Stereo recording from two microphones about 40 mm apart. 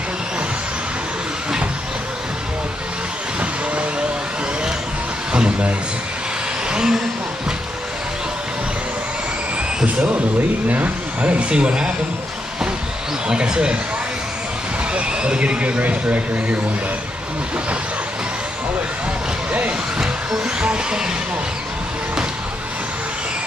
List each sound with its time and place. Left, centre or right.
5.3 s a sound: right
6.7 s vehicle: centre
9.8 s speech: right
13.3 s vehicle: right
15.0 s speech: right
20.6 s vehicle: right